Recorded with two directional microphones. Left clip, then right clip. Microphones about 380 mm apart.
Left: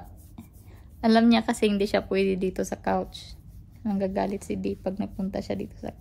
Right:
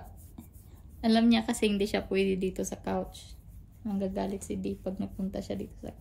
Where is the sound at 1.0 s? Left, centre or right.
Centre.